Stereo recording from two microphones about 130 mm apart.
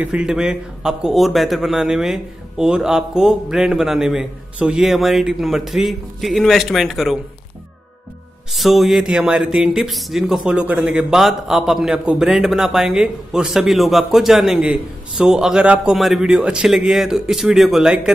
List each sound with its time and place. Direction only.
0.0 s a man's voice: 5° right (ahead or behind)
8.5 s a man's voice: centre (ahead or behind)